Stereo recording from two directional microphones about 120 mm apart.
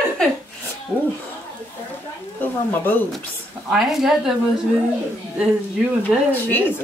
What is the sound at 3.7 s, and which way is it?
Speech, 5° right (ahead or behind).